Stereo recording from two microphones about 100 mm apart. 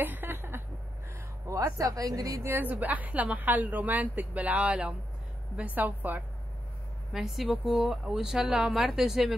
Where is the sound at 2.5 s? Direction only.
20° right (ahead or behind).